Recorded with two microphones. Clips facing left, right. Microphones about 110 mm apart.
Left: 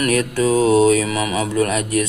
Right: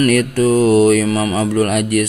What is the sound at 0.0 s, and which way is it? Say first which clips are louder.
Speech: right 4 dB; 50° right (ahead or behind).